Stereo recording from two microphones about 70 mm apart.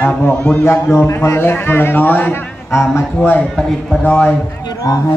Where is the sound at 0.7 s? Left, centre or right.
Left.